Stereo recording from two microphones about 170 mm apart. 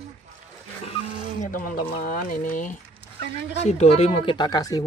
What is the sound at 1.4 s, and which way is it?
Speech, 55° left (ahead or behind).